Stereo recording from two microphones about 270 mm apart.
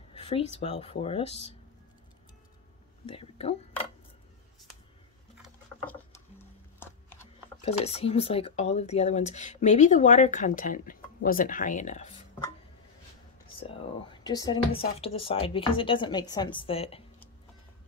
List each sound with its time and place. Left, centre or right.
0.1 s a sound: left
0.6 s speech: left
3.1 s speech: left
5.4 s music: centre
7.6 s speech: left
14.2 s speech: centre